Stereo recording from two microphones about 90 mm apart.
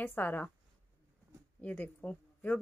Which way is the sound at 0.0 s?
20° left (ahead or behind).